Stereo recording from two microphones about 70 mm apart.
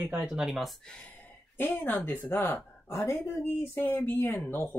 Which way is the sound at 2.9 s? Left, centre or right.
Left.